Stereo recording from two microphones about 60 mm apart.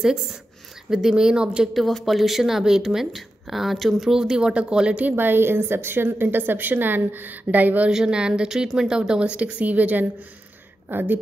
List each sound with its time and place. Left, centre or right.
0.0 s speech: centre
1.7 s speech: centre; by 5.1 s right
5.1 s a woman's voice: right
7.9 s a woman's voice: centre; by 11.1 s right